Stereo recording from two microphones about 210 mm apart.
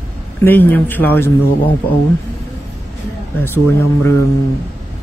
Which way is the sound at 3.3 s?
10° left (ahead or behind).